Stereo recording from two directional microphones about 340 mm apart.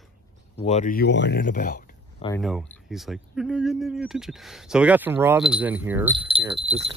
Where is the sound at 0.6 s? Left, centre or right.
Left.